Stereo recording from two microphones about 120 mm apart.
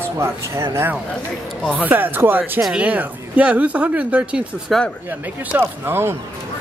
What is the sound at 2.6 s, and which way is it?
Speech, 10° right (ahead or behind).